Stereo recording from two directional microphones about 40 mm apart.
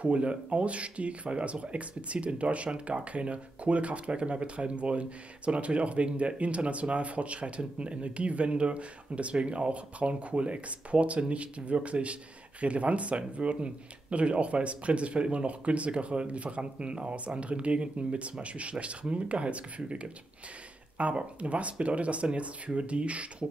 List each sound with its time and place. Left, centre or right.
0.0 s speech: right